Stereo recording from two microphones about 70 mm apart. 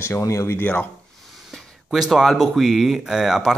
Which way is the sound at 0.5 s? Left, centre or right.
Left.